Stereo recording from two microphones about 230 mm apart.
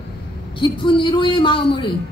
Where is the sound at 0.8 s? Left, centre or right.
Centre.